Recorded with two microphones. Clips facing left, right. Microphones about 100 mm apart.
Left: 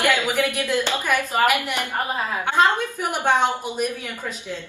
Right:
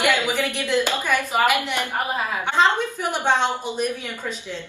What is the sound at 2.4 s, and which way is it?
A woman's voice, 10° left (ahead or behind).